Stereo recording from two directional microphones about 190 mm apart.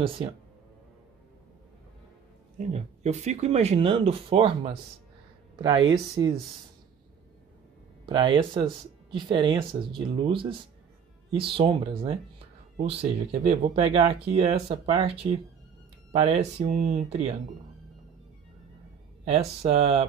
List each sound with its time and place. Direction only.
2.6 s speech: 35° right (ahead or behind); by 6.3 s 20° right (ahead or behind)
8.0 s speech: 25° right (ahead or behind)
19.2 s speech: 35° right (ahead or behind)